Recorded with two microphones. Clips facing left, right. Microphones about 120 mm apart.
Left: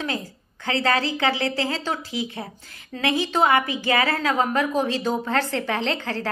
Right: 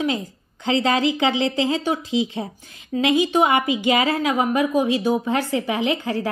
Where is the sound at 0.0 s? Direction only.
20° right (ahead or behind).